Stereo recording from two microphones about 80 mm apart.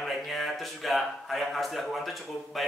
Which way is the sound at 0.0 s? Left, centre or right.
Centre.